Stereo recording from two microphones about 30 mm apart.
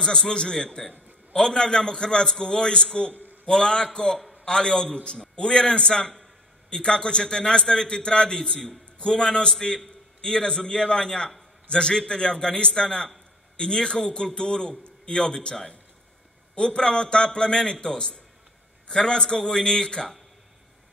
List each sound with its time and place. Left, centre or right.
0.0 s a man's voice: left
3.1 s a man's voice: right
3.4 s a man's voice: left
11.1 s a man's voice: centre
11.7 s a man's voice: left
16.5 s a man's voice: left